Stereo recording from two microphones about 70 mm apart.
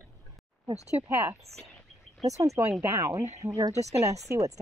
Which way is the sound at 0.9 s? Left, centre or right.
Right.